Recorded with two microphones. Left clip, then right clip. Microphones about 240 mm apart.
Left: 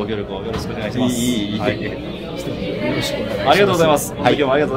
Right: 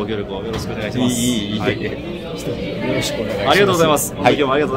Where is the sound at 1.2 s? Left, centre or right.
Right.